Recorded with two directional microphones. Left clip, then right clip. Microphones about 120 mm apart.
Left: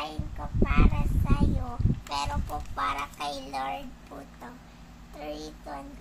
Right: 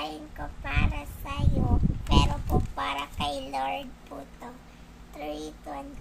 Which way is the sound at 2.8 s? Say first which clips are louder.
Left 4 dB; 5° right (ahead or behind).